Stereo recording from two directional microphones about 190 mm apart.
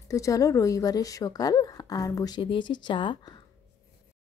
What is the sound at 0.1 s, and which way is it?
Speech, 15° left (ahead or behind).